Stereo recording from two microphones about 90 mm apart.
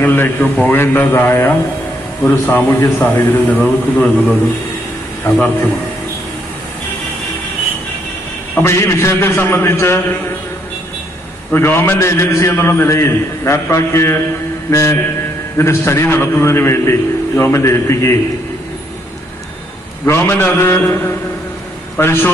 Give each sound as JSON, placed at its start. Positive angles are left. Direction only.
{"t": 0.0, "sound": "a man's voice", "side_deg": 20}
{"t": 8.6, "sound": "a man's voice", "side_deg": 30}
{"t": 11.5, "sound": "a man's voice", "side_deg": 25}
{"t": 20.1, "sound": "a man's voice", "side_deg": 25}